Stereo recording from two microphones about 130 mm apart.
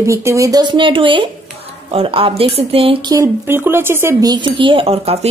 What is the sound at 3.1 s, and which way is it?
Speech, 20° right (ahead or behind).